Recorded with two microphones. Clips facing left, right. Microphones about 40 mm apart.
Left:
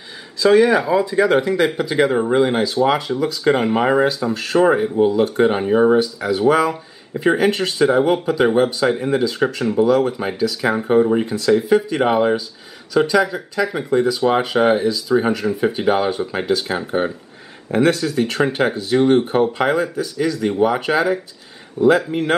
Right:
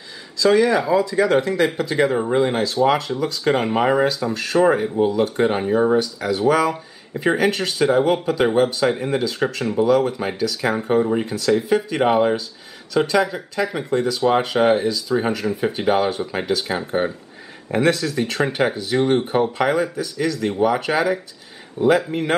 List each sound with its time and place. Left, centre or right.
0.4 s speech: centre
5.7 s speech: left
5.9 s speech: centre
21.8 s speech: right